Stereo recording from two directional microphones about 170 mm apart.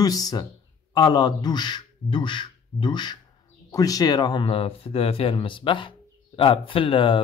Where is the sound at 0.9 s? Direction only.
25° left (ahead or behind).